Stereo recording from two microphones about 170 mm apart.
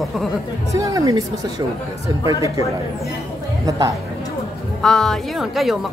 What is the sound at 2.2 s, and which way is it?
Speech, 20° right (ahead or behind).